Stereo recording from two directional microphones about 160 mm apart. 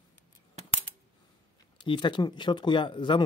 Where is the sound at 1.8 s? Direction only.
30° left (ahead or behind).